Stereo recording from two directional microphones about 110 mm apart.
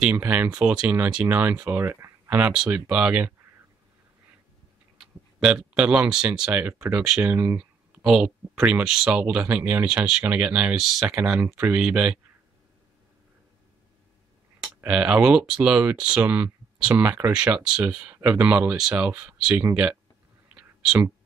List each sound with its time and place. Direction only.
0.0 s speech: 10° right (ahead or behind)
2.5 s speech: 5° right (ahead or behind)
5.4 s speech: 10° right (ahead or behind)
6.6 s speech: 25° right (ahead or behind)
7.0 s speech: 5° right (ahead or behind)
7.3 s speech: 20° right (ahead or behind)
8.0 s speech: 10° right (ahead or behind)
14.8 s speech: 10° right (ahead or behind)
20.5 s whispering: 15° right (ahead or behind)